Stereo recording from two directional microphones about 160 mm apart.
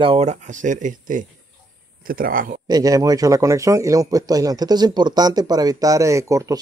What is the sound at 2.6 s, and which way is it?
Speech, 25° right (ahead or behind).